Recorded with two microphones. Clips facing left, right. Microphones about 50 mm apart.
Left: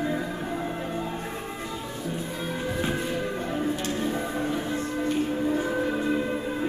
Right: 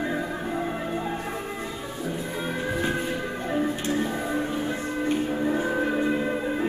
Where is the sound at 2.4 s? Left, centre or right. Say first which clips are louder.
Right 2 dB; centre.